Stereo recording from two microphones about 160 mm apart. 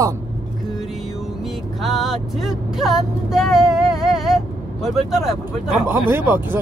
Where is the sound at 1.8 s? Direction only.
Centre (ahead or behind).